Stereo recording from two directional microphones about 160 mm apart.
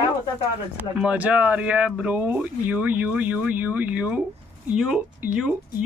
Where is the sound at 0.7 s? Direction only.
10° right (ahead or behind).